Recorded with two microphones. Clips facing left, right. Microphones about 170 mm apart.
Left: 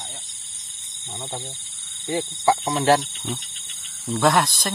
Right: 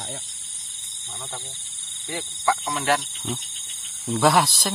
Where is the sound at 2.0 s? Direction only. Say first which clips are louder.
Left 5 dB; 30° left (ahead or behind).